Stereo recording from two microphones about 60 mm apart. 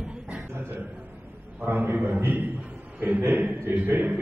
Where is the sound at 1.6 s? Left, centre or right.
Right.